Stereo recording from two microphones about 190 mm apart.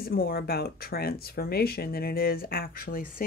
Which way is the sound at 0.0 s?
50° left (ahead or behind).